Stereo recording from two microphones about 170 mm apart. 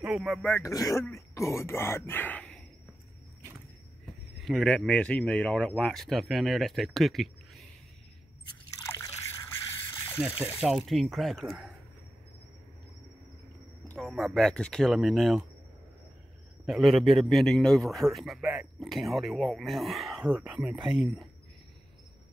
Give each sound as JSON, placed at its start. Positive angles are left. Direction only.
{"t": 0.0, "sound": "speech", "side_deg": -5}
{"t": 0.6, "sound": "speech", "side_deg": 20}
{"t": 4.4, "sound": "a man's voice", "side_deg": 0}
{"t": 8.8, "sound": "liquid", "side_deg": 20}
{"t": 9.8, "sound": "a sound", "side_deg": 20}
{"t": 10.1, "sound": "a man's voice", "side_deg": -5}
{"t": 13.8, "sound": "a man's voice", "side_deg": 0}
{"t": 16.6, "sound": "a man's voice", "side_deg": 0}